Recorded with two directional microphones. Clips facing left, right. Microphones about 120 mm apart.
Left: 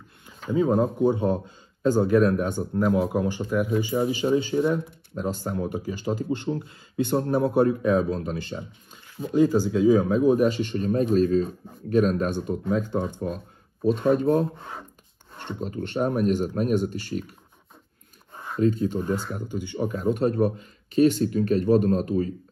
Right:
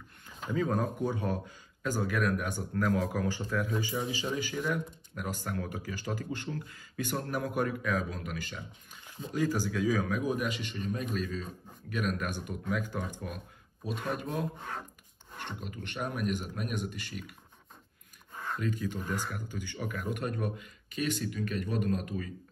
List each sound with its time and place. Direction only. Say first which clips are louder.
0.5 s speech: left 9 dB; 20° left (ahead or behind)
4.0 s speech: left 12 dB; 40° left (ahead or behind)
4.4 s speech: left 9 dB; 25° left (ahead or behind)
18.6 s speech: left 14 dB; 35° left (ahead or behind)
19.3 s speech: left 9 dB; 20° left (ahead or behind)
20.2 s speech: left 12 dB; 35° left (ahead or behind)